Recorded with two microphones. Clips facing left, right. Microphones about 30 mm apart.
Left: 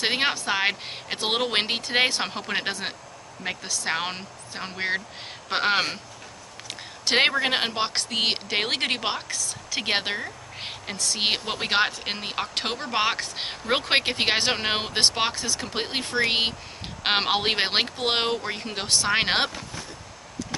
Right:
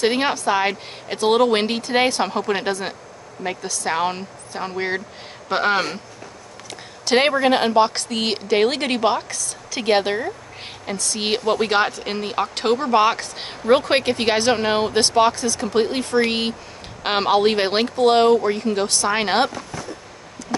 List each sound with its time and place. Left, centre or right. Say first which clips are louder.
0.0 s speech: right 5 dB; centre